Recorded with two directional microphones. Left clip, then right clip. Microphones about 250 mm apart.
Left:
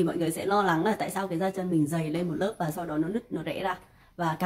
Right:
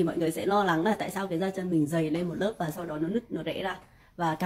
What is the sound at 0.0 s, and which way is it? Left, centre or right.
A woman's voice, centre.